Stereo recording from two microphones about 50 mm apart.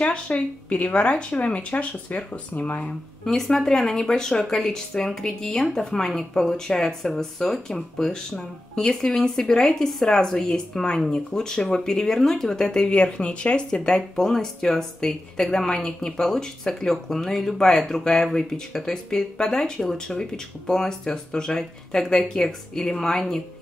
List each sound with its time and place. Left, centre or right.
0.0 s speech: left
3.3 s speech: centre